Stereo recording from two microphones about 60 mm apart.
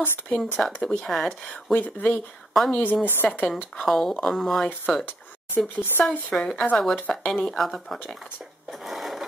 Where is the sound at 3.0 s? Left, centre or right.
Left.